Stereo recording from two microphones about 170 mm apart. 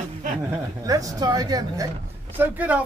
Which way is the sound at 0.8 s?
20° right (ahead or behind).